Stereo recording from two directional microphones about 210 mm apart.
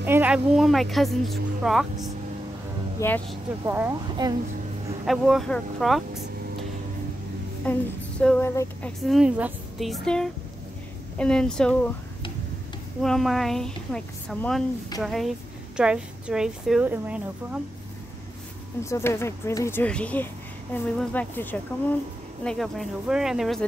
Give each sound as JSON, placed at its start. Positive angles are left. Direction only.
{"t": 0.0, "sound": "a woman's voice", "side_deg": -10}
{"t": 3.0, "sound": "speech", "side_deg": 15}
{"t": 3.6, "sound": "a woman's voice", "side_deg": -10}
{"t": 5.0, "sound": "a woman's voice", "side_deg": 0}
{"t": 7.7, "sound": "speech", "side_deg": 5}
{"t": 9.0, "sound": "a woman's voice", "side_deg": 0}
{"t": 13.0, "sound": "a woman's voice", "side_deg": 0}
{"t": 18.9, "sound": "a woman's voice", "side_deg": 15}